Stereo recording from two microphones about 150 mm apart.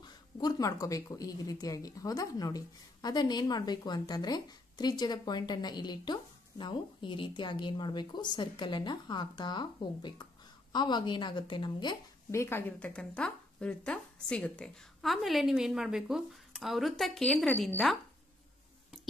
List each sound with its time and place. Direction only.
0.0 s a woman's voice: 25° left (ahead or behind)
12.3 s speech: 15° left (ahead or behind)